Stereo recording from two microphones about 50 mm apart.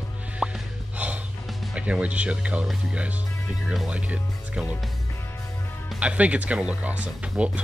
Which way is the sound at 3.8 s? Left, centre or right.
Right.